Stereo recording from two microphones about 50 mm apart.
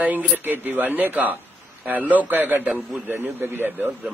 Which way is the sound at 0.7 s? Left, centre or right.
Right.